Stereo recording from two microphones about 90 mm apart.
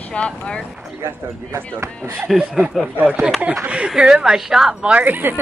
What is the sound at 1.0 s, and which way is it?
Speech, 30° right (ahead or behind).